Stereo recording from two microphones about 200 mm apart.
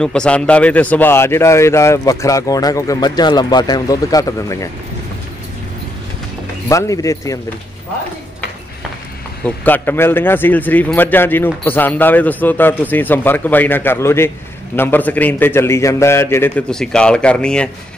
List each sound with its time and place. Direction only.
0.0 s a man's voice: 5° left (ahead or behind)
6.7 s a man's voice: 15° left (ahead or behind)
9.4 s a man's voice: 10° left (ahead or behind)